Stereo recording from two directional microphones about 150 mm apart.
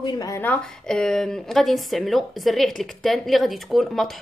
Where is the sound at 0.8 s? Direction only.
5° left (ahead or behind).